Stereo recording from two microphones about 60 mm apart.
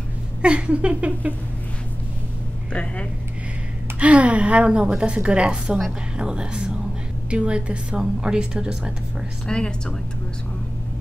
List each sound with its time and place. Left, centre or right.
0.4 s a woman's voice: centre
2.7 s speech: centre
4.0 s a woman's voice: right
9.5 s a woman's voice: centre